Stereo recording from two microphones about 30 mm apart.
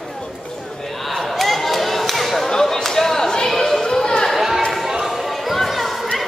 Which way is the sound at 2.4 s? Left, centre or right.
Centre.